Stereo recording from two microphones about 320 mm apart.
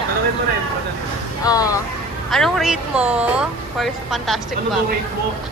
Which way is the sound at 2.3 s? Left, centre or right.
Centre.